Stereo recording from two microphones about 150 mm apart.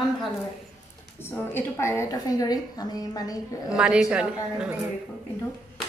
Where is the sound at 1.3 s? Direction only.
15° left (ahead or behind).